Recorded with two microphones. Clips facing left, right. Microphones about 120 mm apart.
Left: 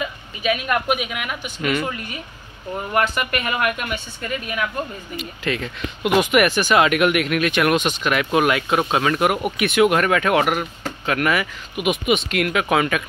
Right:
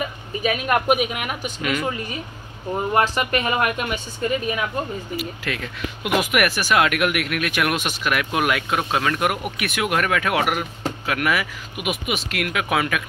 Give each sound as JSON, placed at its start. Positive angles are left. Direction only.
{"t": 0.4, "sound": "a woman's voice", "side_deg": -35}
{"t": 2.7, "sound": "speech", "side_deg": -25}
{"t": 5.1, "sound": "speech", "side_deg": -5}